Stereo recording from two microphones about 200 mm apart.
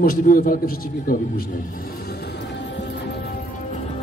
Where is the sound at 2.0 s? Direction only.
55° left (ahead or behind).